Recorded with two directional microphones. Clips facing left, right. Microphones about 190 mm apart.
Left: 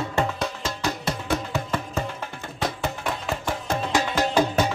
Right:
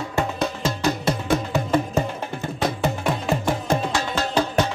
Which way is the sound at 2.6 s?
20° right (ahead or behind).